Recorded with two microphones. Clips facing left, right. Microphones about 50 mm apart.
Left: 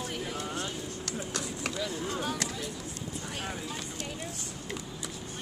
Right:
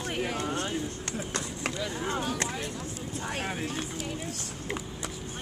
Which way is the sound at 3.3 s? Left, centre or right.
Right.